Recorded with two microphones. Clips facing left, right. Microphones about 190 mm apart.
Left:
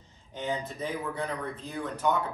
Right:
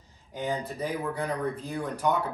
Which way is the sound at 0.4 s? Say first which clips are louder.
Right 2 dB; 10° right (ahead or behind).